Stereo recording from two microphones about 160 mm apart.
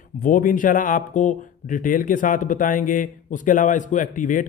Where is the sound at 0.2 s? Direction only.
60° left (ahead or behind).